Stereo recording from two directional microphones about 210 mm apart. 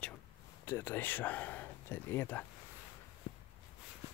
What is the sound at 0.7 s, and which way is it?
Speech, 10° left (ahead or behind).